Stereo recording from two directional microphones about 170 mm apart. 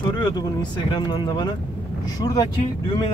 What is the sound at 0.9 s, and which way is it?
Speech, 25° left (ahead or behind).